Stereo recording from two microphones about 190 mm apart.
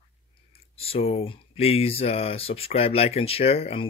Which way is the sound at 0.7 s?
30° left (ahead or behind).